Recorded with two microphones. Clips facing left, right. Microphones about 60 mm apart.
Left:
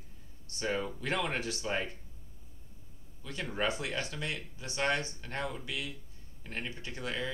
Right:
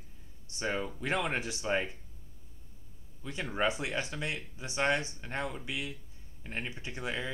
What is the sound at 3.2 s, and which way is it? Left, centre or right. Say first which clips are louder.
Speech: right 2 dB; right.